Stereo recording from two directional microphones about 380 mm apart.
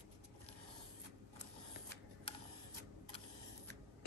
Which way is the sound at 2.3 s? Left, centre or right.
Centre.